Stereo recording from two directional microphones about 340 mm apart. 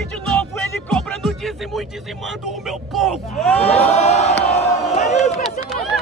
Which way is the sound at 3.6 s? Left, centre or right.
Centre.